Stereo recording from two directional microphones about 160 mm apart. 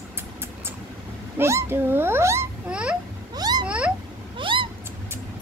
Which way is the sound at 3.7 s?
5° right (ahead or behind).